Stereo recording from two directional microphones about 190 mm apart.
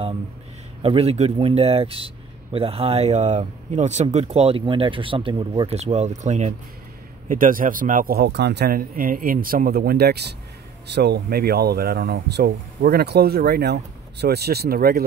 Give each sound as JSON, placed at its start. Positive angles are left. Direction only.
{"t": 0.8, "sound": "speech", "side_deg": -30}